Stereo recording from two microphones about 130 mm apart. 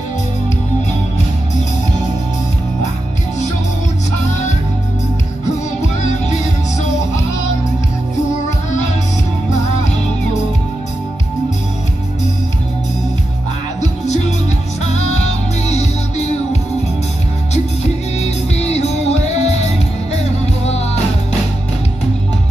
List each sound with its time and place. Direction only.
13.7 s music: 60° left (ahead or behind)
15.6 s music: 60° left (ahead or behind)
18.2 s music: 55° left (ahead or behind)